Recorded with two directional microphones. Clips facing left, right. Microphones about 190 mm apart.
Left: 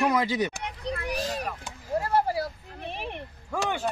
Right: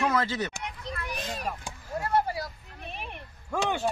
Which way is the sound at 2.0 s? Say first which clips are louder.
Even; 35° left (ahead or behind).